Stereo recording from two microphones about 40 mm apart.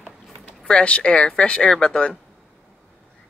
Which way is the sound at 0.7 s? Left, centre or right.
Left.